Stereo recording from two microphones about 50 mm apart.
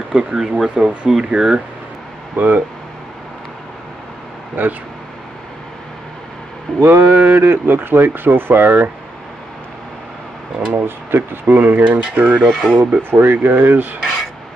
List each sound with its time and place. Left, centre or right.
0.1 s speech: centre
2.3 s speech: right
4.6 s speech: right
6.8 s speech: right
10.7 s speech: right
12.4 s speech: centre
13.1 s speech: right